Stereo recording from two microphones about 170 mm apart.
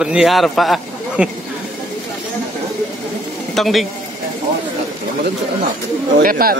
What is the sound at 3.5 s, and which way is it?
Speech, centre (ahead or behind).